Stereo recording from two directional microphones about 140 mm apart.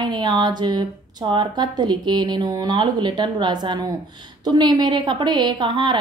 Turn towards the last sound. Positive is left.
turn(degrees=-35)  # may be behind; listen again after turning